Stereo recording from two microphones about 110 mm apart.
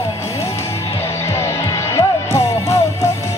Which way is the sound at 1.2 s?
25° left (ahead or behind).